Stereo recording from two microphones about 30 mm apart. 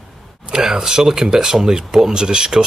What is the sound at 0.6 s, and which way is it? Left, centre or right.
Speech, centre.